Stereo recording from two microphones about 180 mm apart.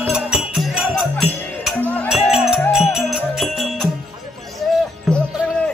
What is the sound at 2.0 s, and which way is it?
Music, 5° right (ahead or behind).